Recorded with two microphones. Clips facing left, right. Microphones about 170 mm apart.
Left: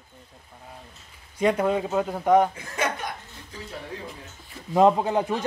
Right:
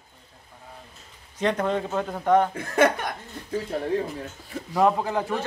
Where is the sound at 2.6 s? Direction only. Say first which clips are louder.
Right 7 dB; 60° right (ahead or behind).